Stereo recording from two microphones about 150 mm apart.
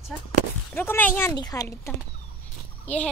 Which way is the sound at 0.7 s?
15° left (ahead or behind).